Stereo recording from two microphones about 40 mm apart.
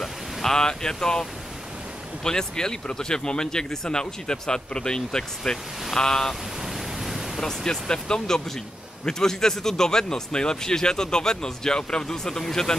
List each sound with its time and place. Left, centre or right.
0.0 s speech: centre
2.2 s speech: centre
6.6 s pink noise: centre
7.3 s speech: centre